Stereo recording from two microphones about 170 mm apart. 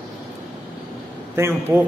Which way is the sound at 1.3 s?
15° right (ahead or behind).